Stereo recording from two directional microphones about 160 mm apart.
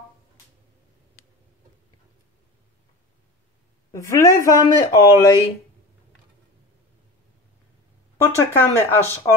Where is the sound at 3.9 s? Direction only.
20° left (ahead or behind).